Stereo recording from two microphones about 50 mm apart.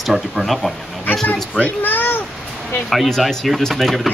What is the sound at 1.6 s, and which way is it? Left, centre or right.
Speech, left.